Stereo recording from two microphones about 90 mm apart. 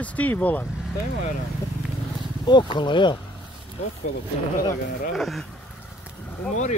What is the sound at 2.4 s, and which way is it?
Speech, 60° left (ahead or behind).